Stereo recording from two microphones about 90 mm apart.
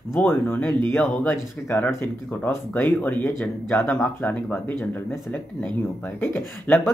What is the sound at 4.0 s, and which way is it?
Speech, 15° left (ahead or behind).